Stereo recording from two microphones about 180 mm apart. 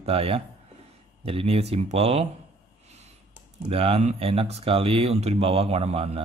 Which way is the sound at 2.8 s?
40° right (ahead or behind).